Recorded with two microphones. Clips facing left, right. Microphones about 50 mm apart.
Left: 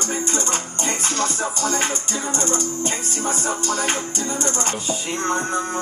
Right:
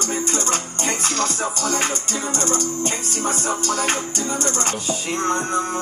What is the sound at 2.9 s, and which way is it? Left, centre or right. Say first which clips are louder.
Music: right 1 dB; right.